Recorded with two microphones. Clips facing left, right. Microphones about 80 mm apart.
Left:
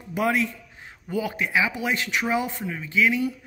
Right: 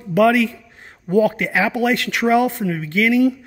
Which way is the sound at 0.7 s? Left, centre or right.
Right.